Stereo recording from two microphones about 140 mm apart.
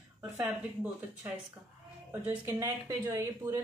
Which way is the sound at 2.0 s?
15° right (ahead or behind).